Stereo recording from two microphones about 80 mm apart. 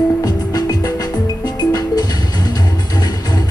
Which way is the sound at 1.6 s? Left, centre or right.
Left.